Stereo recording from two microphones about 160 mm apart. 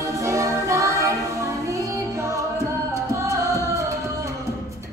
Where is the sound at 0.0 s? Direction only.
20° right (ahead or behind).